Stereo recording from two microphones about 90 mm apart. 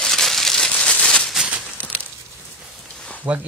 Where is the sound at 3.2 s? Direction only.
15° right (ahead or behind).